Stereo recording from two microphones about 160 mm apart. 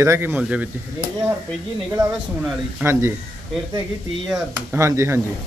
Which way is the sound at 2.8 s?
15° right (ahead or behind).